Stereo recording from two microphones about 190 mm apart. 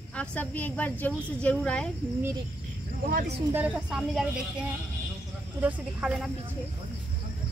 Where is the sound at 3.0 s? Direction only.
50° right (ahead or behind).